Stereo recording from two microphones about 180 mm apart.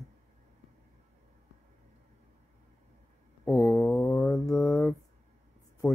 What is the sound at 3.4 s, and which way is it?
Mantra, 15° left (ahead or behind).